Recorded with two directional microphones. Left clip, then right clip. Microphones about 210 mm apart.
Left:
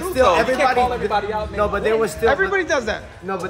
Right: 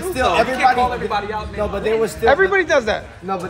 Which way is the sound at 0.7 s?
55° left (ahead or behind).